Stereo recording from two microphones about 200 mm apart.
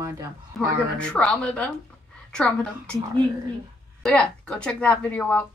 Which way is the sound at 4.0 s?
5° left (ahead or behind).